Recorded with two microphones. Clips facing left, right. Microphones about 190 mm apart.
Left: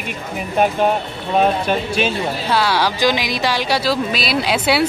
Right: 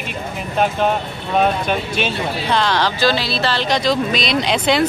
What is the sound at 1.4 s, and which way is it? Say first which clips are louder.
Speech: left 1 dB; 5° left (ahead or behind).